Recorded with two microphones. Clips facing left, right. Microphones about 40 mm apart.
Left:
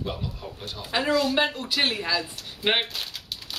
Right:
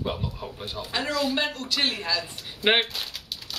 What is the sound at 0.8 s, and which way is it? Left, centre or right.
Speech, centre.